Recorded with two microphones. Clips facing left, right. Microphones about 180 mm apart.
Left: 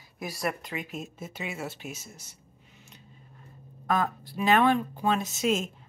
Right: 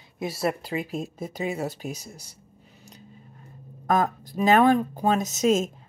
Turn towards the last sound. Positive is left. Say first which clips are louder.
# right 5 dB
turn(degrees=-40)  # may be behind; listen again after turning